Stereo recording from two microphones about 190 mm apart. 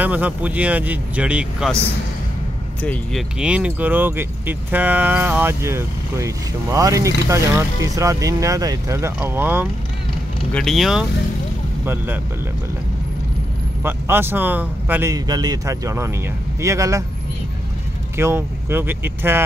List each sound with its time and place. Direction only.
0.0 s speech: 10° right (ahead or behind)
2.8 s speech: 5° left (ahead or behind)
10.5 s speech: centre (ahead or behind)
13.8 s speech: 10° right (ahead or behind)
18.1 s speech: 15° right (ahead or behind)